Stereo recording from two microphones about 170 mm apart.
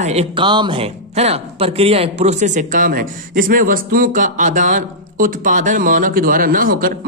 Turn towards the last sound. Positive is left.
turn(degrees=-55)  # may be behind; listen again after turning